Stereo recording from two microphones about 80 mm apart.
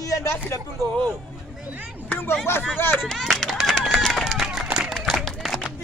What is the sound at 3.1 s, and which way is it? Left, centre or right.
Run, centre.